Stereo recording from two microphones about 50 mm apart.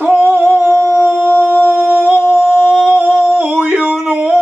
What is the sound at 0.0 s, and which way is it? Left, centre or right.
Humming, right.